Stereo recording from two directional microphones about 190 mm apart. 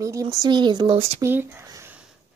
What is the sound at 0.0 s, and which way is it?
Speech, 15° right (ahead or behind).